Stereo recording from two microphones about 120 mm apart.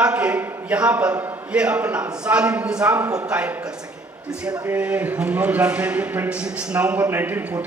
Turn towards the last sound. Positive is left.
turn(degrees=-15)  # may be behind; listen again after turning